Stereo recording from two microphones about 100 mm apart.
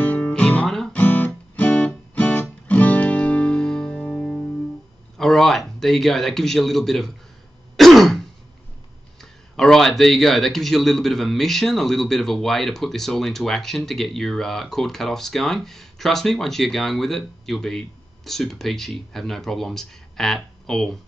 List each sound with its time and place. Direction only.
0.0 s music: 15° left (ahead or behind)
0.9 s music: 15° left (ahead or behind)
5.1 s speech: 5° left (ahead or behind)
7.7 s throat clearing: centre (ahead or behind)
9.2 s speech: 5° left (ahead or behind)